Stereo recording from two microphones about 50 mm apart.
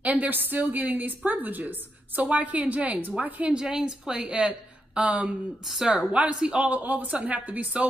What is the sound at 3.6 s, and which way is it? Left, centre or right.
A woman's voice, centre.